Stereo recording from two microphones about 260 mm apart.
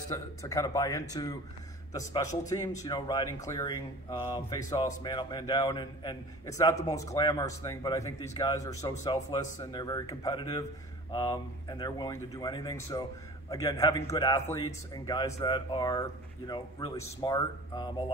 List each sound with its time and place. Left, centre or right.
0.1 s speech: centre